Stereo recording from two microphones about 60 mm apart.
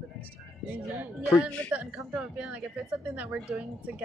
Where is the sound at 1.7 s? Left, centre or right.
Right.